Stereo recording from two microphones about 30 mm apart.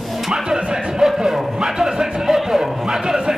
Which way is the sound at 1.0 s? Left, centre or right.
Centre.